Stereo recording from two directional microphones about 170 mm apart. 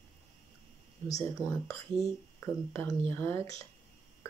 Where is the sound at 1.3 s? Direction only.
15° left (ahead or behind).